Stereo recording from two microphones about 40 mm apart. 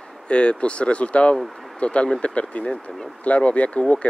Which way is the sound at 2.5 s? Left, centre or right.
Left.